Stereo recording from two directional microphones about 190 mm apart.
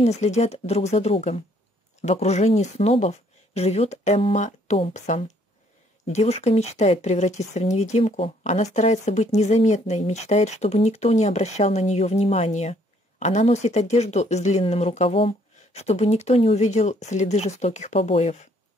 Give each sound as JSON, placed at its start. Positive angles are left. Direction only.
{"t": 0.0, "sound": "speech", "side_deg": 35}